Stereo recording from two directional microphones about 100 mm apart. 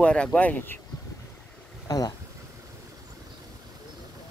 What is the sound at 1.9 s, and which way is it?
Speech, 40° left (ahead or behind).